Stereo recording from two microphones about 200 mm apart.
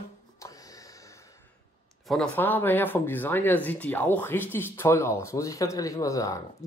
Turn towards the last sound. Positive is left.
turn(degrees=15)  # may be behind; listen again after turning